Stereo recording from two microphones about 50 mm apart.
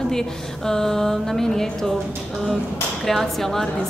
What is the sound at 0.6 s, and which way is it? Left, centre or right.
A woman's voice, centre.